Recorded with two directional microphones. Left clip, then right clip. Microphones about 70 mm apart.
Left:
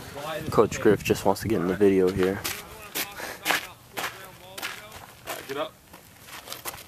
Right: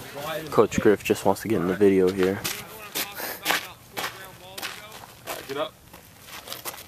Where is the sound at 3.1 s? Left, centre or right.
Right.